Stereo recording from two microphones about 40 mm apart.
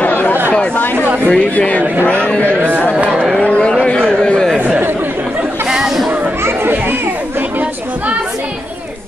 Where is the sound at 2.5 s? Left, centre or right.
Right.